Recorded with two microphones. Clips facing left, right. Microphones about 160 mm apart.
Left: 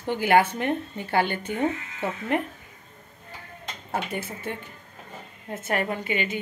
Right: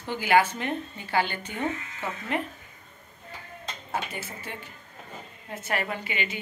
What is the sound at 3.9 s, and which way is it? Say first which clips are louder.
A woman's voice: left 4 dB; 50° left (ahead or behind).